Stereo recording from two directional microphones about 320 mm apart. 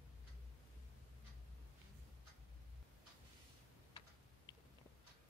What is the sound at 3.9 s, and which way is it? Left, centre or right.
Tick-tock, centre.